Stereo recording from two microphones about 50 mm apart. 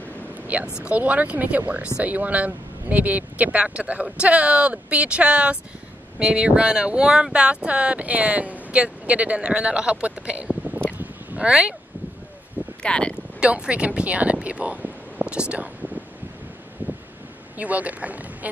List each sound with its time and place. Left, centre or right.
0.5 s speech: right
12.8 s speech: centre
13.4 s speech: right
15.3 s a sound: right
16.8 s wind noise: right
17.6 s speech: right